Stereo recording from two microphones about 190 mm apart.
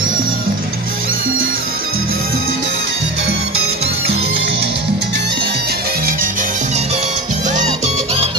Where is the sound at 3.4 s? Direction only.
30° right (ahead or behind).